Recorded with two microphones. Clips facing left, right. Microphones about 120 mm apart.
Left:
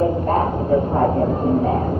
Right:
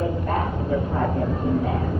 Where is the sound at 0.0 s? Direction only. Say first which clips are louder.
Left 6 dB; 40° left (ahead or behind).